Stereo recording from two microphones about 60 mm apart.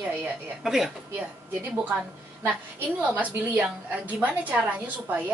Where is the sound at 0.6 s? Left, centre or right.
Centre.